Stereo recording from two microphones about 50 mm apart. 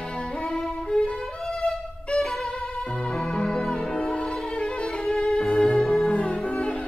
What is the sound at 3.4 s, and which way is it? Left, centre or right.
Music, centre.